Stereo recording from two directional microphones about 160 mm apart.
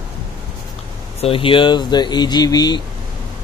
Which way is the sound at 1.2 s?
35° left (ahead or behind).